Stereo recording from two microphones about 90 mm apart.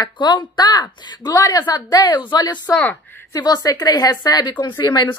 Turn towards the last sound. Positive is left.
turn(degrees=55)  # may be behind; listen again after turning